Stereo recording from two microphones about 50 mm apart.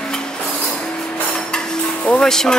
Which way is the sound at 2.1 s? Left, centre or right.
Centre.